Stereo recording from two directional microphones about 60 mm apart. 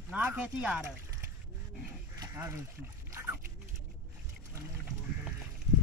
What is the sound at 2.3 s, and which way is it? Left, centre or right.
Speech, right.